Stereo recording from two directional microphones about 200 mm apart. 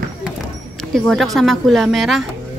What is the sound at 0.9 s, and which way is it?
A woman's voice, centre (ahead or behind).